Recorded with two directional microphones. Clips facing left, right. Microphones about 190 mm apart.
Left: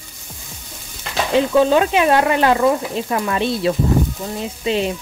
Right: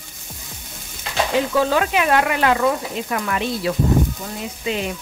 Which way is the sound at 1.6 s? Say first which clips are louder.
Left 5 dB; 25° left (ahead or behind).